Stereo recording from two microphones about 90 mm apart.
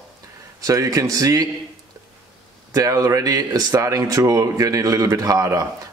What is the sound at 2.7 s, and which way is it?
Speech, 40° right (ahead or behind).